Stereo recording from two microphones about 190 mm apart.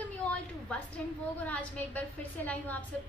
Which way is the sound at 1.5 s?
5° left (ahead or behind).